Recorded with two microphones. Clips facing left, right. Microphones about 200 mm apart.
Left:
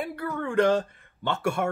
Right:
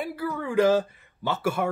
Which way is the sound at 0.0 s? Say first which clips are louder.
Right 1 dB; 5° right (ahead or behind).